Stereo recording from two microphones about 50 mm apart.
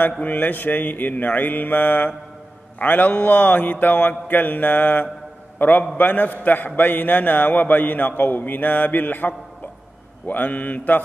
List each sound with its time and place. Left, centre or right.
0.2 s a man's voice: left